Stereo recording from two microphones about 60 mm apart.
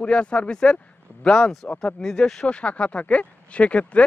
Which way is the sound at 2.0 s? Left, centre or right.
Centre.